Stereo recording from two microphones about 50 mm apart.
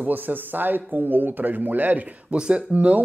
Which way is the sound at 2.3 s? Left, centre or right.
Centre.